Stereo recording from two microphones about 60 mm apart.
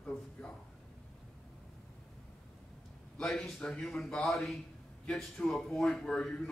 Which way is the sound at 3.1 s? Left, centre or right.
Centre.